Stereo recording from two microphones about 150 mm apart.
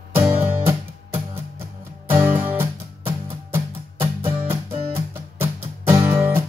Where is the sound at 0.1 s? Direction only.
15° right (ahead or behind).